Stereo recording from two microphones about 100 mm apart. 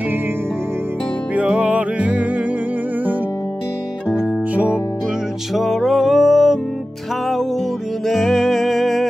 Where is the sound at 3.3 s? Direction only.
30° left (ahead or behind).